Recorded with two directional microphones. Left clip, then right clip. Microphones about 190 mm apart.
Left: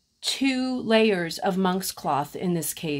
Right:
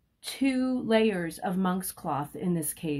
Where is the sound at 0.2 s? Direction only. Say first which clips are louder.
Left 4 dB; 25° left (ahead or behind).